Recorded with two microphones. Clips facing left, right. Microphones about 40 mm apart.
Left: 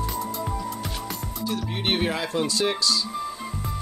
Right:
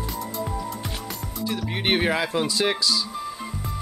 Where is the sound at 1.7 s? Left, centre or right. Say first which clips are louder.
Right 4 dB; centre.